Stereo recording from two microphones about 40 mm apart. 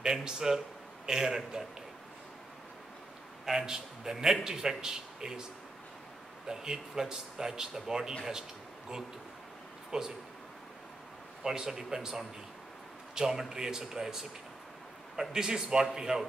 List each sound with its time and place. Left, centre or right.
0.0 s speech: centre
3.4 s speech: centre
6.4 s speech: centre
11.4 s speech: centre
13.3 s speech: centre
15.1 s speech: centre